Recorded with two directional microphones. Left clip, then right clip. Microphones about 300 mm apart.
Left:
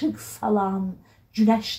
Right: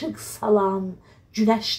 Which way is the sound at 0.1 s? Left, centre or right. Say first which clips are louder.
Right 4 dB; right.